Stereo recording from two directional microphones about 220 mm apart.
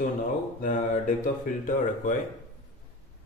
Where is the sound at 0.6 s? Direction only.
35° left (ahead or behind).